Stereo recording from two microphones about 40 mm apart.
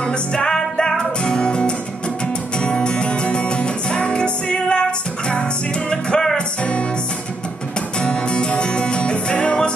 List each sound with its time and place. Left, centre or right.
0.0 s music: left
5.9 s music: left
8.0 s music: left